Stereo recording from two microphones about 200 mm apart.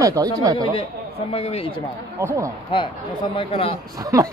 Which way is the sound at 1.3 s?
30° left (ahead or behind).